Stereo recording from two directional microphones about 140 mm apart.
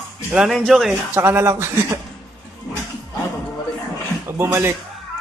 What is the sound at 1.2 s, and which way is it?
Speech, 15° right (ahead or behind).